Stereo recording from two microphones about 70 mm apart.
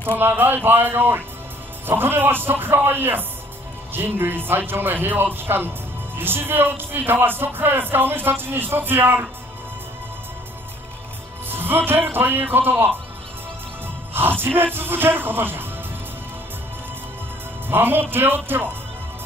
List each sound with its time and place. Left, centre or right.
0.2 s speech: right
11.4 s speech: right
14.4 s speech: right
17.6 s music: right
18.1 s speech: right